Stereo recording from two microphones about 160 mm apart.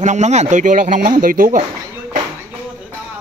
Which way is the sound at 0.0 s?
45° right (ahead or behind).